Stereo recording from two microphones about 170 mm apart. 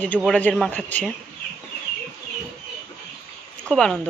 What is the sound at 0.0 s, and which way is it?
Speech, 5° left (ahead or behind).